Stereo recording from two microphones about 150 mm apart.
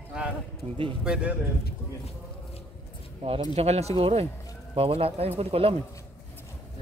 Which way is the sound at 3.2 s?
40° right (ahead or behind).